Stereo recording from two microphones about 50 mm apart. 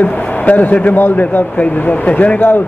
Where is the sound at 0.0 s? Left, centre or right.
Left.